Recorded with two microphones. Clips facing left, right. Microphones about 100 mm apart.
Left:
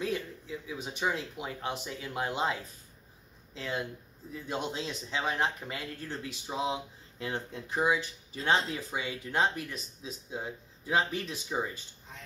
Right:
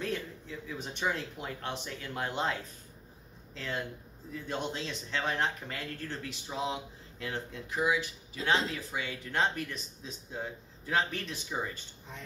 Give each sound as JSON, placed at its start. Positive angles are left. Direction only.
{"t": 0.0, "sound": "speech", "side_deg": 10}
{"t": 3.5, "sound": "speech", "side_deg": 10}